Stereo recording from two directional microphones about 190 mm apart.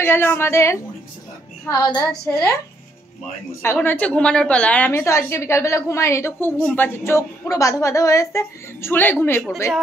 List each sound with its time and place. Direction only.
0.0 s a woman's voice: 10° left (ahead or behind)
1.9 s a woman's voice: 20° left (ahead or behind)
3.6 s a woman's voice: 10° left (ahead or behind)